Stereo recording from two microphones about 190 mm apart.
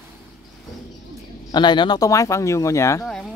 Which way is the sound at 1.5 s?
25° left (ahead or behind).